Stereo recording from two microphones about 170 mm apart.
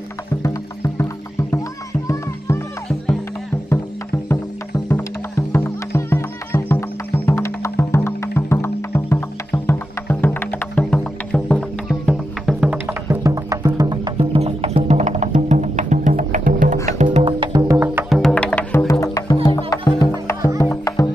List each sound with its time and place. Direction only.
0.4 s music: 20° left (ahead or behind)
5.5 s music: 15° left (ahead or behind); by 18.0 s 10° right (ahead or behind)
18.1 s music: 5° left (ahead or behind)
18.9 s music: 20° left (ahead or behind)